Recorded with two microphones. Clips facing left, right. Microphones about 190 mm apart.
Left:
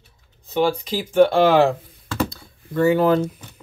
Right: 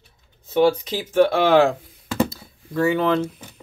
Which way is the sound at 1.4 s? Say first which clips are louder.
Left 1 dB; centre (ahead or behind).